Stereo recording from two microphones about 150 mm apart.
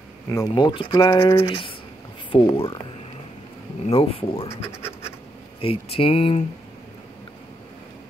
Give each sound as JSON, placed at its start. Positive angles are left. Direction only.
{"t": 0.3, "sound": "speech", "side_deg": 25}
{"t": 3.8, "sound": "speech", "side_deg": 40}